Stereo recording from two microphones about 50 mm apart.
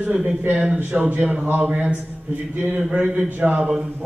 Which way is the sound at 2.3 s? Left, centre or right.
Right.